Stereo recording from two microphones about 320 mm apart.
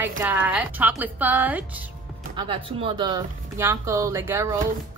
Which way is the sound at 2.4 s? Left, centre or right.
Centre.